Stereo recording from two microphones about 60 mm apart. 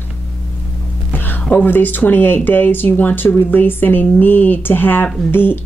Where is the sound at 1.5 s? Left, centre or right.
Left.